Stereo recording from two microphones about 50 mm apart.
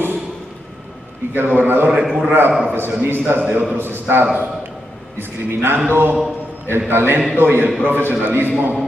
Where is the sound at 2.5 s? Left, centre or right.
Right.